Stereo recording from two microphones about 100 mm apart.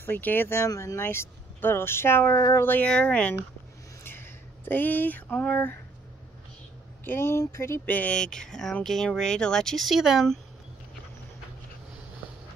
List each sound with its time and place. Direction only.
0.0 s speech: 20° left (ahead or behind)
4.0 s a sound: 20° left (ahead or behind)
7.1 s speech: 25° left (ahead or behind); by 10.4 s centre (ahead or behind)